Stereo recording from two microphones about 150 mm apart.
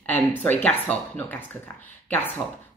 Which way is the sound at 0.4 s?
10° left (ahead or behind).